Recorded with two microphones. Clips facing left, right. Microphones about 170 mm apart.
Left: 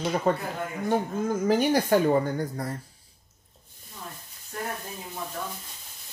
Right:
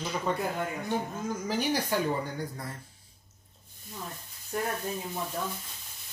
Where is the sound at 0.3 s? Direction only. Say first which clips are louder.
Left 6 dB; 50° left (ahead or behind).